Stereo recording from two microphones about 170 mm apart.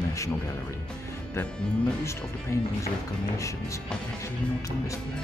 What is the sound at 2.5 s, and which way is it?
Speech, 15° left (ahead or behind).